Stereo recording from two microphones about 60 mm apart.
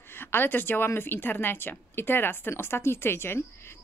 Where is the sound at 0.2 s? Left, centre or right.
Left.